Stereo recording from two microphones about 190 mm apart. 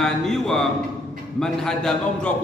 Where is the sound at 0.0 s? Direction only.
Centre (ahead or behind).